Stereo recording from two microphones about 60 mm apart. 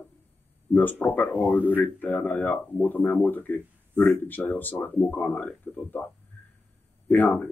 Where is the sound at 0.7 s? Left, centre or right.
Left.